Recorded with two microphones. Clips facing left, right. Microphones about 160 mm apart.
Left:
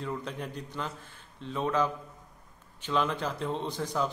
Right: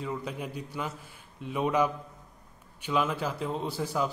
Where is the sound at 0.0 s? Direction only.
5° right (ahead or behind).